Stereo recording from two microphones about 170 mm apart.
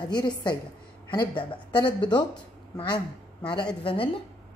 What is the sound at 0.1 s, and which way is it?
Speech, 25° left (ahead or behind).